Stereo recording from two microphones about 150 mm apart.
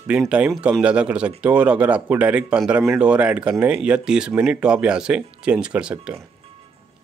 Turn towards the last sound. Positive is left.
turn(degrees=-5)  # may be behind; listen again after turning